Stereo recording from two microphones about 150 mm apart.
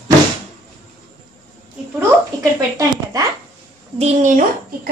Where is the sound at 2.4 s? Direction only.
25° right (ahead or behind).